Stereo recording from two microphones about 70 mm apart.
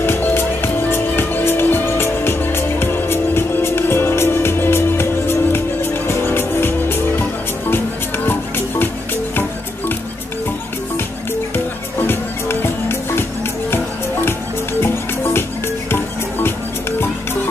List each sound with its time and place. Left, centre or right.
0.0 s music: left
8.3 s music: left
12.1 s music: left
14.2 s music: left